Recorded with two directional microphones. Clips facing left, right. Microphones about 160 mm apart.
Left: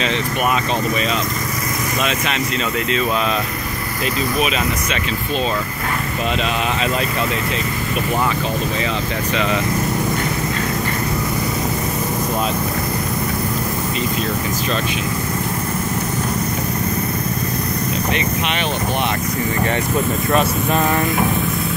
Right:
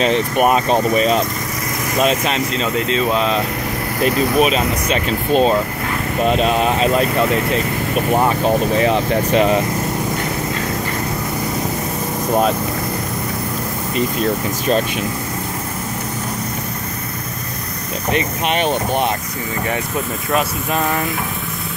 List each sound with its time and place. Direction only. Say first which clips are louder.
0.0 s speech: right 5 dB; 45° right (ahead or behind)
4.4 s speech: right 4 dB; 40° right (ahead or behind)
18.1 s speech: right 2 dB; 45° right (ahead or behind)